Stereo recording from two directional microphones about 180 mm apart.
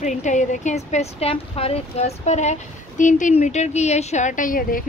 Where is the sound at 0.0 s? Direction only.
40° left (ahead or behind).